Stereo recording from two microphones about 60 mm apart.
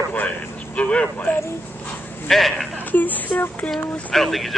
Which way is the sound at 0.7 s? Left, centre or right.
Left.